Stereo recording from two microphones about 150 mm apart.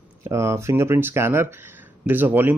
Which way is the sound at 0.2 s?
20° right (ahead or behind).